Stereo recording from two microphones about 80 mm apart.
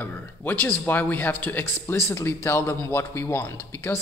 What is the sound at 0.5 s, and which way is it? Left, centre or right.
Speech, left.